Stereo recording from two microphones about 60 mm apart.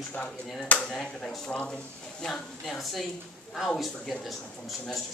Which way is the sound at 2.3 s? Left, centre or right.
Centre.